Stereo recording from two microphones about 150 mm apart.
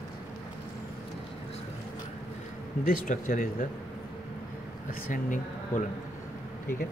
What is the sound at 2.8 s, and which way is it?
Speech, 70° left (ahead or behind).